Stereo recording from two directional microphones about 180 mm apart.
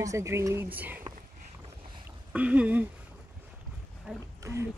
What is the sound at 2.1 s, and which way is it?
Speech, 10° right (ahead or behind).